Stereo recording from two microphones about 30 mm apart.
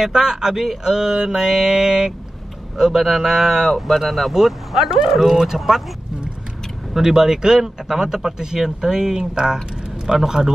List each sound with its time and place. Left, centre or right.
0.0 s mantra: centre
2.8 s speech: centre
6.9 s speech: centre
10.0 s mantra: right